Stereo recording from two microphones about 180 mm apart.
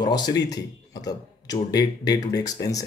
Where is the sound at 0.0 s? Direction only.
25° left (ahead or behind).